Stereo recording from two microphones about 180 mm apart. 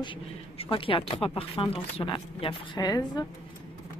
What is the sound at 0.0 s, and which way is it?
Speech, 30° left (ahead or behind).